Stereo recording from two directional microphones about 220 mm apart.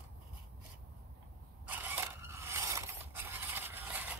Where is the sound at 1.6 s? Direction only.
10° right (ahead or behind).